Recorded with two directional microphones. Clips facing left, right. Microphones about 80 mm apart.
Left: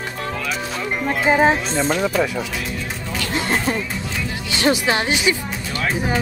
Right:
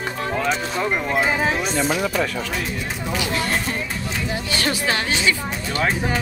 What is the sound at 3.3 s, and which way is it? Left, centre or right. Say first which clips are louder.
Speech: left 3 dB; left.